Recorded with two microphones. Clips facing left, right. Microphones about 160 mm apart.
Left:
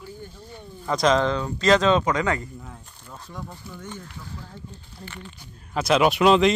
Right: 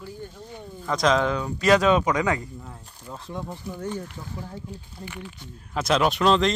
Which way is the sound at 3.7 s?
35° right (ahead or behind).